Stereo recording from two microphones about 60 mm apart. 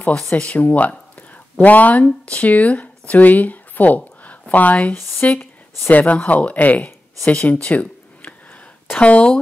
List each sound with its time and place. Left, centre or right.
0.4 s speech: left